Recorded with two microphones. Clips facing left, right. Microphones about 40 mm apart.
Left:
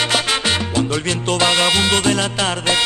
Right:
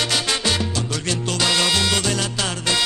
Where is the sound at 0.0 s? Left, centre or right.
Left.